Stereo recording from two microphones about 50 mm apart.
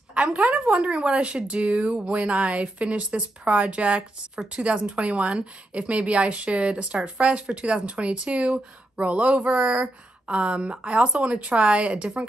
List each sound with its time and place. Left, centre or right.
0.1 s a woman's voice: right
10.2 s speech: right